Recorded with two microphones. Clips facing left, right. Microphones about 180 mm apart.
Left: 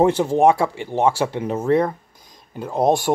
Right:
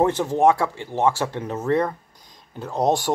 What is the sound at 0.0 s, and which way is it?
Speech, 15° left (ahead or behind).